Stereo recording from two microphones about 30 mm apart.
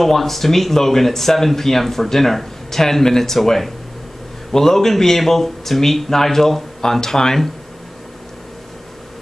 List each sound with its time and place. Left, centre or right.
0.0 s speech: centre